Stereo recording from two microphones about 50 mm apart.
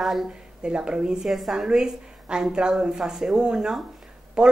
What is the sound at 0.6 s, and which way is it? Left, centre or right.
Speech, centre.